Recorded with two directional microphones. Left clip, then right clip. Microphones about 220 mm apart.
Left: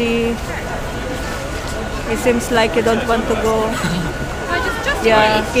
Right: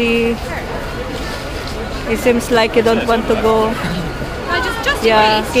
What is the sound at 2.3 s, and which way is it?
Speech, 15° right (ahead or behind).